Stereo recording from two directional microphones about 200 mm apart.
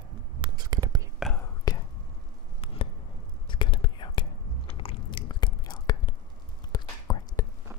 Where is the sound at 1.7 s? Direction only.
20° left (ahead or behind).